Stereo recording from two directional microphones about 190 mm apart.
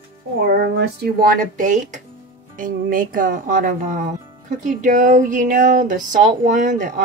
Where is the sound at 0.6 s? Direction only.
55° right (ahead or behind).